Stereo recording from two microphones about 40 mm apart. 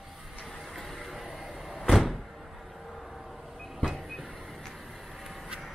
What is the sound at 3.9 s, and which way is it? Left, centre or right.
Train, centre.